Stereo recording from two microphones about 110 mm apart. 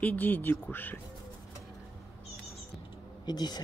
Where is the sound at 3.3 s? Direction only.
40° left (ahead or behind).